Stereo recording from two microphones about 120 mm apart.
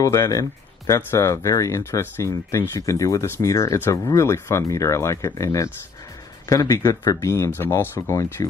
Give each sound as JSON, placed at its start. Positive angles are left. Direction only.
{"t": 0.0, "sound": "speech", "side_deg": 25}